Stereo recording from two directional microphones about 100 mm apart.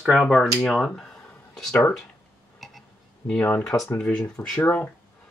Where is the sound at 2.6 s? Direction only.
Centre (ahead or behind).